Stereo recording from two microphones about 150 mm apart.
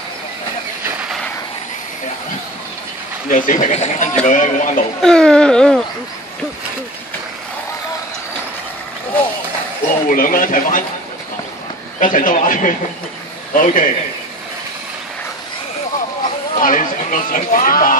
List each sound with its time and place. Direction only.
3.3 s speech: 60° left (ahead or behind)
5.0 s a sound: 5° left (ahead or behind)
10.0 s speech: 65° left (ahead or behind)
12.0 s speech: 60° left (ahead or behind)
16.5 s speech: 60° left (ahead or behind)